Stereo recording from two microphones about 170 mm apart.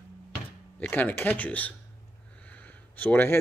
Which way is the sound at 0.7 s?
10° left (ahead or behind).